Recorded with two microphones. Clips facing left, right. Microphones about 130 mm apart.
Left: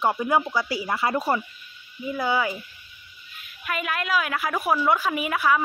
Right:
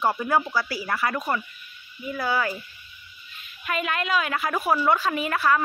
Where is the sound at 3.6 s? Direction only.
Centre (ahead or behind).